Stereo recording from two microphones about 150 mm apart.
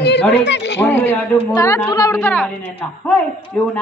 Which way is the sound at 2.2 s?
10° left (ahead or behind).